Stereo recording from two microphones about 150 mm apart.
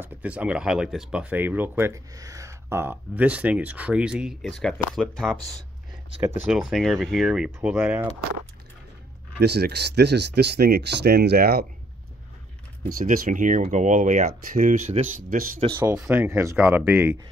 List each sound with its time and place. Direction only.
0.0 s speech: 10° right (ahead or behind)
6.5 s speech: centre (ahead or behind)
9.4 s speech: 90° right
12.8 s speech: 70° right (ahead or behind)
15.7 s speech: 20° right (ahead or behind)